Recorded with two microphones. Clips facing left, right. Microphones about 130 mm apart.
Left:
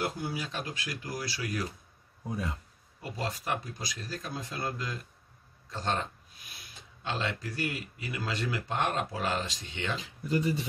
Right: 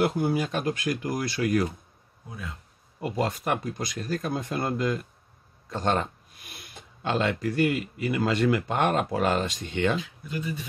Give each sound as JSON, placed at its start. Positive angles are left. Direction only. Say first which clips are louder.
{"t": 0.0, "sound": "speech", "louder": "right 9 dB", "side_deg": -55}
{"t": 3.0, "sound": "speech", "louder": "right 8 dB", "side_deg": -60}
{"t": 10.2, "sound": "speech", "louder": "left 4 dB", "side_deg": 30}